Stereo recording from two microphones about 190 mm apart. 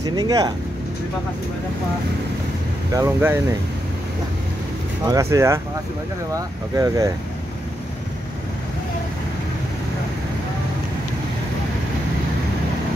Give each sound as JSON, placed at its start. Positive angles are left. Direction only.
{"t": 0.0, "sound": "speech", "side_deg": -20}
{"t": 2.9, "sound": "speech", "side_deg": -15}
{"t": 5.0, "sound": "speech", "side_deg": -15}